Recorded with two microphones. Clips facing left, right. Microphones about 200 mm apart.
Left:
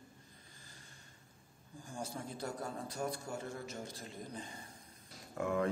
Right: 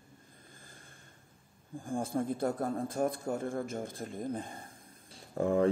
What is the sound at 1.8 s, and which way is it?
A man's voice, 55° right (ahead or behind).